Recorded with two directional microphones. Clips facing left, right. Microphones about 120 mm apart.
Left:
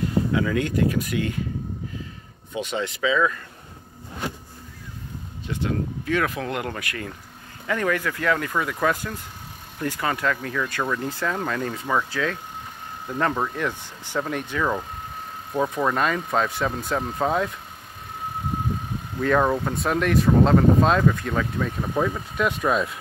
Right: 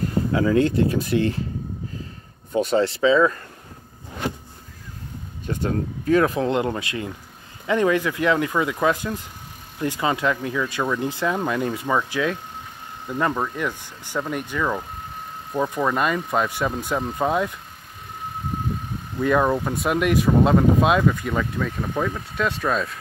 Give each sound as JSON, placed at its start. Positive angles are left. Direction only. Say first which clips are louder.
{"t": 0.3, "sound": "speech", "louder": "right 4 dB", "side_deg": -35}
{"t": 2.5, "sound": "speech", "louder": "right 8 dB", "side_deg": -40}
{"t": 5.5, "sound": "speech", "louder": "right 2 dB", "side_deg": -40}
{"t": 13.1, "sound": "speech", "louder": "right 1 dB", "side_deg": -5}
{"t": 19.1, "sound": "speech", "louder": "right 1 dB", "side_deg": -5}